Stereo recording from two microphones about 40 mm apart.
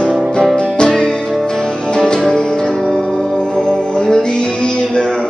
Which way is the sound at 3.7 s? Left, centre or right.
Centre.